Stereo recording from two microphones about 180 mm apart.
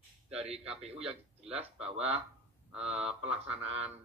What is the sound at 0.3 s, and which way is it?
Speech, 35° right (ahead or behind).